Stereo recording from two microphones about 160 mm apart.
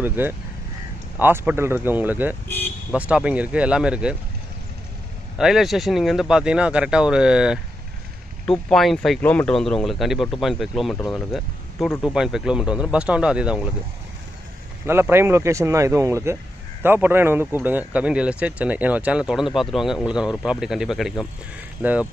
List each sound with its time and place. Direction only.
0.0 s speech: 10° right (ahead or behind)
2.4 s vehicle: 10° left (ahead or behind)
2.9 s speech: 5° right (ahead or behind)
5.4 s speech: centre (ahead or behind)
14.9 s speech: 15° right (ahead or behind)